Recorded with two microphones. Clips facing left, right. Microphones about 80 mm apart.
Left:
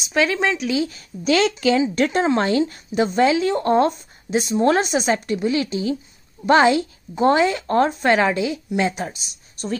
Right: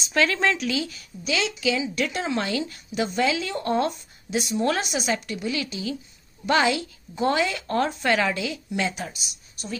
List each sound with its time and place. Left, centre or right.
0.1 s speech: centre
0.7 s a woman's voice: left
1.2 s a woman's voice: left